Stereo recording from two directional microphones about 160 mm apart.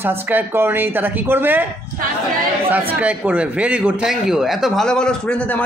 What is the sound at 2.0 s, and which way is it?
Speech, 60° right (ahead or behind).